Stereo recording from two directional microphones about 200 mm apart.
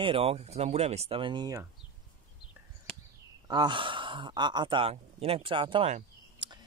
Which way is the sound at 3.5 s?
20° right (ahead or behind).